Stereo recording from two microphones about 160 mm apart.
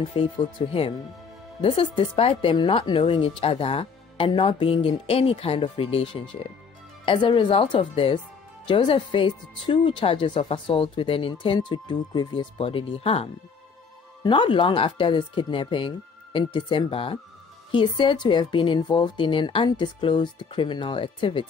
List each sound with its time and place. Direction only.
0.1 s speech: 35° left (ahead or behind)